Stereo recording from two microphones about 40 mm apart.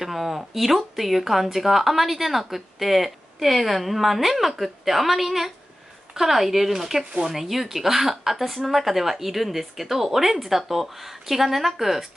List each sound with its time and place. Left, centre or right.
0.0 s speech: centre
7.1 s speech: centre
7.3 s speech: centre